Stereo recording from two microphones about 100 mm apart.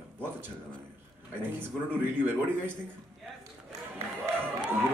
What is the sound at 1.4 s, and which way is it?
A man's voice, 20° right (ahead or behind).